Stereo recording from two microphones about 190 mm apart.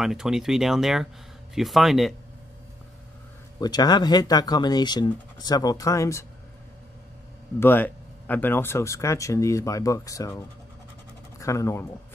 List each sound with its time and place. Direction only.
0.0 s speech: centre (ahead or behind)
3.5 s speech: 20° left (ahead or behind)
7.6 s speech: 10° left (ahead or behind)